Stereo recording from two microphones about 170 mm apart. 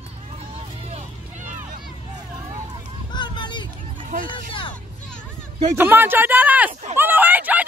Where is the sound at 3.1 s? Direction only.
25° left (ahead or behind).